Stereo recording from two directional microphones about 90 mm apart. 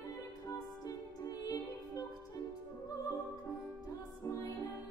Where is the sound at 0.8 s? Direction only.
40° left (ahead or behind).